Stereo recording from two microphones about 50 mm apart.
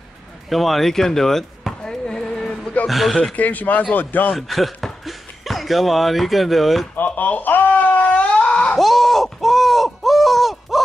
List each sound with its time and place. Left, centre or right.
0.5 s speech: centre
1.8 s basketball bounce: centre
2.9 s speech: centre
3.3 s speech: left
4.4 s speech: centre
7.1 s a sound: left
8.7 s a sound: centre